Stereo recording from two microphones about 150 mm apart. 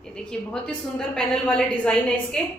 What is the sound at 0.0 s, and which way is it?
A woman's voice, 5° left (ahead or behind).